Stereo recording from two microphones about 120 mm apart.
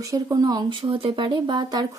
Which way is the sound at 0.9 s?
45° right (ahead or behind).